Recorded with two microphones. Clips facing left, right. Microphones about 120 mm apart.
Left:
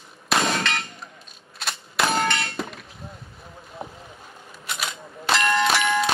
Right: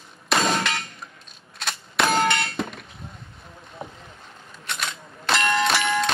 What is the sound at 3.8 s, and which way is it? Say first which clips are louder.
Vehicle: left 1 dB; 15° left (ahead or behind).